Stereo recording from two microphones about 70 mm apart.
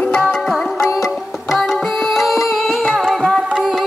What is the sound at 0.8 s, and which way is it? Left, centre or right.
Music, left.